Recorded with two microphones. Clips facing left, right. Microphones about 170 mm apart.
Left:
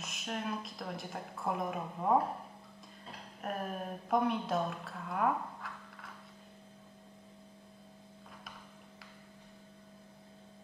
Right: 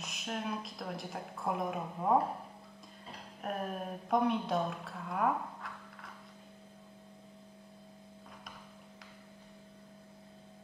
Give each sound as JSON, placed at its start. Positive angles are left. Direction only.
{"t": 0.0, "sound": "a woman's voice", "side_deg": 0}